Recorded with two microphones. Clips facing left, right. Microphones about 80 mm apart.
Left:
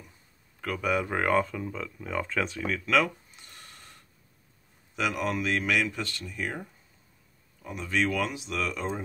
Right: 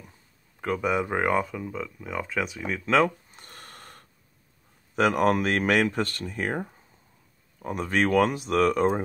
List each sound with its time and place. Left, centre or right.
0.6 s speech: right